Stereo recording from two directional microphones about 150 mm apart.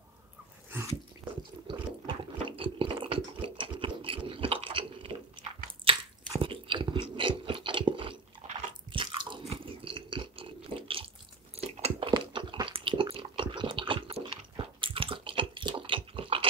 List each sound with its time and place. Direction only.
0.7 s dog: 15° right (ahead or behind)
1.7 s chewing: 35° right (ahead or behind)
8.9 s biting: 35° right (ahead or behind)
12.1 s a sound: 35° right (ahead or behind)